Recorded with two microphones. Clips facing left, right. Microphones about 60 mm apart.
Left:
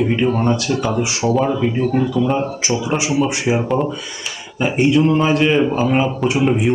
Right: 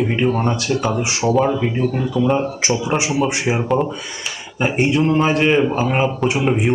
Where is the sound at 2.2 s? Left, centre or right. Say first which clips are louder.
Right 4 dB; centre.